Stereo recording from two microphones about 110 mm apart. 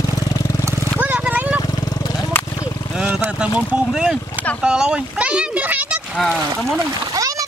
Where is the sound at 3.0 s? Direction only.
10° right (ahead or behind).